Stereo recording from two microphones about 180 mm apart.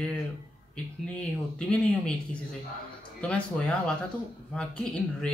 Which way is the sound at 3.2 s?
5° left (ahead or behind).